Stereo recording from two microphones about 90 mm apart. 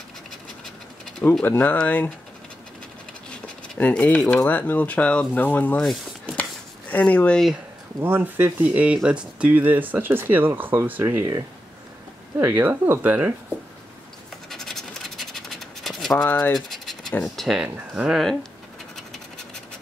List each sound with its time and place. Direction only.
1.4 s speech: 20° left (ahead or behind)
3.3 s a sound: 15° left (ahead or behind)
3.9 s speech: 10° left (ahead or behind)
5.8 s speech: 5° left (ahead or behind)
6.9 s speech: 15° left (ahead or behind)
8.0 s speech: 25° right (ahead or behind)
12.4 s speech: 25° right (ahead or behind)
14.5 s scratch: 5° left (ahead or behind)
17.2 s speech: 5° left (ahead or behind)
17.6 s speech: 10° right (ahead or behind)
18.9 s scratch: 5° left (ahead or behind)